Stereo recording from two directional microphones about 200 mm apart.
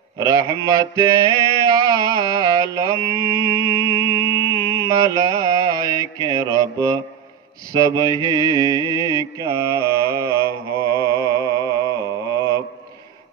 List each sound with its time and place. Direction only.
0.2 s a man's voice: 15° right (ahead or behind)
0.7 s mantra: 15° right (ahead or behind)
3.0 s mantra: 20° left (ahead or behind)
4.2 s music: 20° left (ahead or behind)
4.8 s mantra: 15° right (ahead or behind)